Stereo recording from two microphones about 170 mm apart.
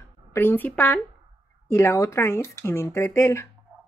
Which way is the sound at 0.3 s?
10° left (ahead or behind).